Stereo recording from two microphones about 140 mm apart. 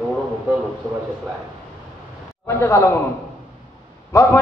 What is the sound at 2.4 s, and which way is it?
Speech, 20° left (ahead or behind).